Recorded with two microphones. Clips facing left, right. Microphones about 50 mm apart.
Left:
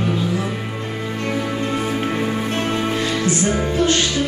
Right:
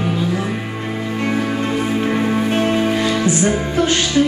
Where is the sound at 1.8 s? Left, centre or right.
Centre.